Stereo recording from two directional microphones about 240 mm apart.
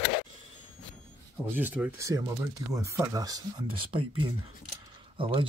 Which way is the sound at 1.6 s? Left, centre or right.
Centre.